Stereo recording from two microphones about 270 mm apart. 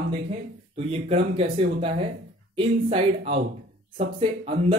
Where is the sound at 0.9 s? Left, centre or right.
Right.